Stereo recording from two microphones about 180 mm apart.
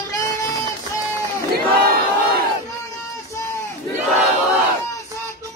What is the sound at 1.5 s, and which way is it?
Battle cry, 55° right (ahead or behind).